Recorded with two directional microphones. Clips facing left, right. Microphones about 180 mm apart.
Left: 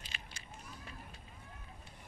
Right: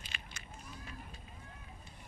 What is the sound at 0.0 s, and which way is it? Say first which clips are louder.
Honk: right 1 dB; 35° left (ahead or behind).